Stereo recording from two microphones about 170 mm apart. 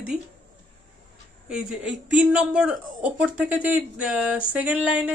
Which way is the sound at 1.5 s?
5° right (ahead or behind).